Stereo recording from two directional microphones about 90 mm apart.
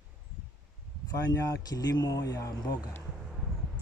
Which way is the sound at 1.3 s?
40° left (ahead or behind).